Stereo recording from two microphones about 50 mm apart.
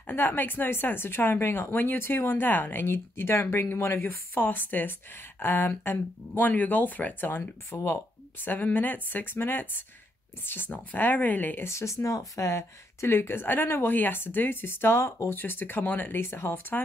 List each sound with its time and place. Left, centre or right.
0.0 s a woman's voice: left
11.6 s speech: left
13.1 s a woman's voice: left
15.3 s a woman's voice: left
16.2 s a woman's voice: left